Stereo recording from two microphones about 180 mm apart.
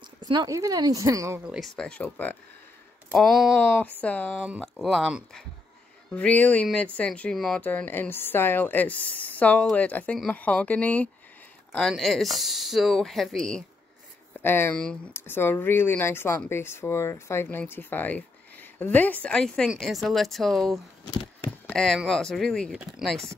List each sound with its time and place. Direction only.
0.2 s speech: 20° right (ahead or behind)
1.5 s speech: centre (ahead or behind)
21.0 s speech: 25° left (ahead or behind)
21.6 s speech: 5° left (ahead or behind)